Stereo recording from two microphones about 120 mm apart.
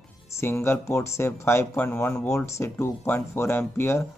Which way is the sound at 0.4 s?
20° left (ahead or behind).